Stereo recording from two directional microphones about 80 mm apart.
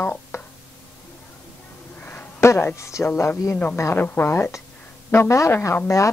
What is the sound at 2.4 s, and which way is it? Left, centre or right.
Speech, left.